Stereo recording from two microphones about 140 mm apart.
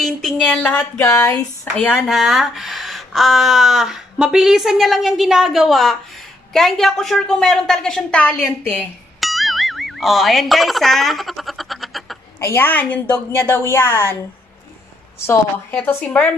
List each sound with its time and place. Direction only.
0.0 s speech: centre (ahead or behind)
1.0 s speech: 25° left (ahead or behind)
1.8 s speech: centre (ahead or behind)
9.2 s music: centre (ahead or behind)
12.4 s a woman's voice: 15° left (ahead or behind)
15.1 s a woman's voice: 15° left (ahead or behind)